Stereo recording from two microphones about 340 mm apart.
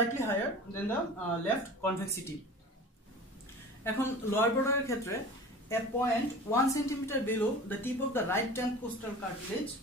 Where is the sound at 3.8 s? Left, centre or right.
Centre.